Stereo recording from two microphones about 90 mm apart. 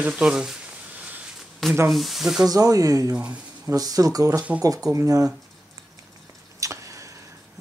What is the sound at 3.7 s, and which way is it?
Speech, 40° right (ahead or behind).